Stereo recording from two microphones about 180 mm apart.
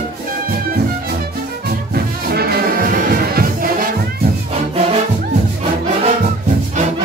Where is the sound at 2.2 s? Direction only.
60° right (ahead or behind).